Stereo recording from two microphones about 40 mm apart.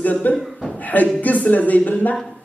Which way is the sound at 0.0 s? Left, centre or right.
Left.